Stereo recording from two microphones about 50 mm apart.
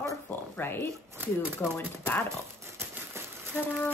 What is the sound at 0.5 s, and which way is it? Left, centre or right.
Speech, left.